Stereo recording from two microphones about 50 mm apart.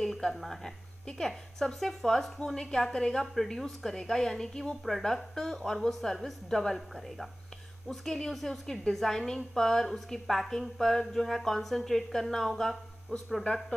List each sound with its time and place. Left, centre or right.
0.0 s a woman's voice: centre
13.4 s a woman's voice: centre